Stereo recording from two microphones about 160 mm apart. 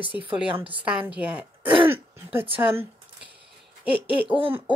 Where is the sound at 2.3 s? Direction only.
35° right (ahead or behind).